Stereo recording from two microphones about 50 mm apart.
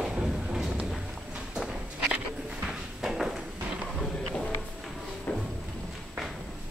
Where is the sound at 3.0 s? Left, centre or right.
Centre.